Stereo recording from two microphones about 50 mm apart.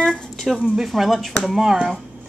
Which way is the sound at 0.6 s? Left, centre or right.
Centre.